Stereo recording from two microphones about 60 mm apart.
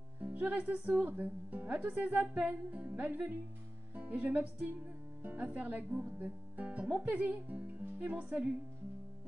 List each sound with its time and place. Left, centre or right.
0.2 s speech: right